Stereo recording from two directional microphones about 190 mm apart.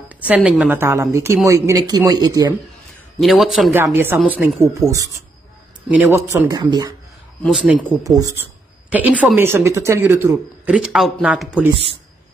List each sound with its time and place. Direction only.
0.1 s speech: 5° right (ahead or behind)
3.2 s a man's voice: centre (ahead or behind); by 7.0 s 20° right (ahead or behind)
7.4 s a man's voice: 5° right (ahead or behind)
8.0 s speech: 20° right (ahead or behind)